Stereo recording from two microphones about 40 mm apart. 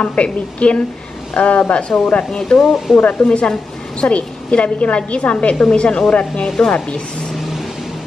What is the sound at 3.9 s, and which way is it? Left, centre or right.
A woman's voice, left.